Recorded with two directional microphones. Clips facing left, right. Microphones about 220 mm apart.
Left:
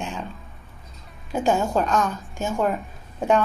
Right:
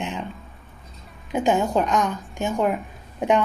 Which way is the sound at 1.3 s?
20° right (ahead or behind).